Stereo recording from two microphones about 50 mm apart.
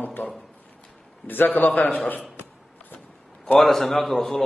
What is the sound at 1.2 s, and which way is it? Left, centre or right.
A man's voice, left.